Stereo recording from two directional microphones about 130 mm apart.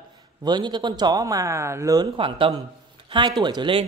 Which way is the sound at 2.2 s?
40° right (ahead or behind).